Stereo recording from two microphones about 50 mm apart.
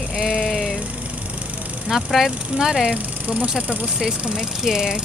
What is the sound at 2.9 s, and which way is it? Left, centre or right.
Speech, right.